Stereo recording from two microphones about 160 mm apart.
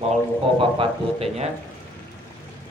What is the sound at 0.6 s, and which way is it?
Speech, 35° right (ahead or behind).